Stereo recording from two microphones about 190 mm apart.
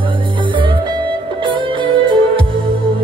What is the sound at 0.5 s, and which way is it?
Music, 25° right (ahead or behind).